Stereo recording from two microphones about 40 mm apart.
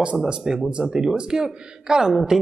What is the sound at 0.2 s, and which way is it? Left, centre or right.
Speech, centre.